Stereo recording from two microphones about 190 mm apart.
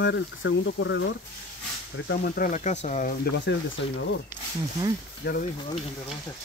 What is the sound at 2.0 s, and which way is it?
Speech, 50° left (ahead or behind).